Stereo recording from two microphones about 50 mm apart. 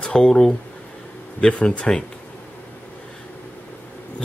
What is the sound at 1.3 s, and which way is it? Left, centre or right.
Speech, centre.